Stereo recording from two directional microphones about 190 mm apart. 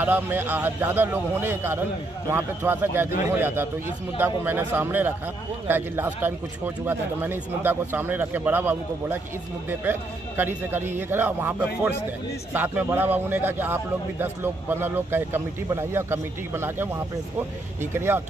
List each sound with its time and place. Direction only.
0.0 s a man's voice: 10° right (ahead or behind)
17.9 s a man's voice: 10° right (ahead or behind)